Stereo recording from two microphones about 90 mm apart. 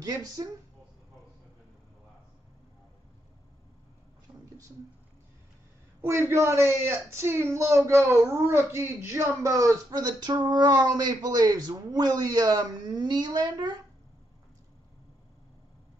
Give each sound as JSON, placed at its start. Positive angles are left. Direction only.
{"t": 0.0, "sound": "a woman's voice", "side_deg": -45}
{"t": 5.9, "sound": "a man's voice", "side_deg": -25}
{"t": 9.9, "sound": "a woman's voice", "side_deg": -55}